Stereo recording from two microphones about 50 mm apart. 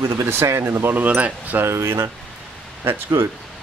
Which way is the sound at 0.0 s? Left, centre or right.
Right.